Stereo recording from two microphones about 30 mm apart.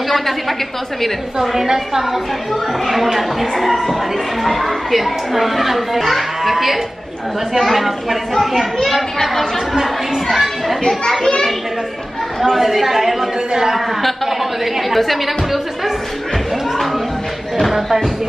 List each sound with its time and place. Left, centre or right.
1.0 s speech: centre
2.9 s a child's voice: centre
4.9 s a man's voice: centre
8.8 s a child's voice: centre
10.3 s speech: centre
12.4 s speech: centre
17.6 s speech: centre